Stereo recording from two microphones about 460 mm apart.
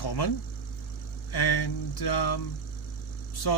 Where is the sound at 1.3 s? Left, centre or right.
Left.